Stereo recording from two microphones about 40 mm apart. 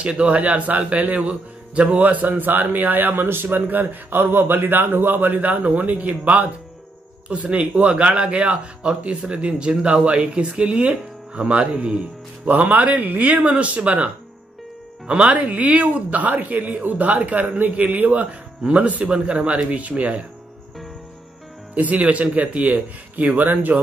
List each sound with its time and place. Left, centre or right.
0.0 s a man's voice: right
3.4 s a man's voice: right
12.4 s a man's voice: right
15.4 s speech: right
21.7 s speech: right